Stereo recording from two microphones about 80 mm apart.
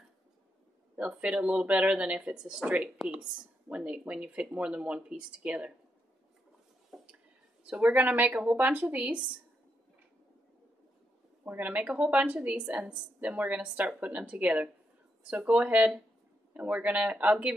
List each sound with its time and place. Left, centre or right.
0.9 s a woman's voice: centre
6.9 s a sound: centre
7.7 s a woman's voice: right
11.4 s a woman's voice: right